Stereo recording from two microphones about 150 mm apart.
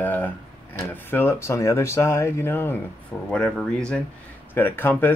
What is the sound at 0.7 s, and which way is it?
Speech, 15° left (ahead or behind).